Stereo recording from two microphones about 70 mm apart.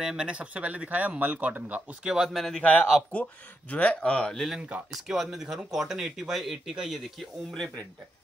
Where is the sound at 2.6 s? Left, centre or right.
Left.